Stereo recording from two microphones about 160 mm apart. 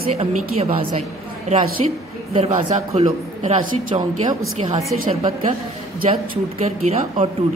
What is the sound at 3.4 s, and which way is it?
Speech, 45° right (ahead or behind).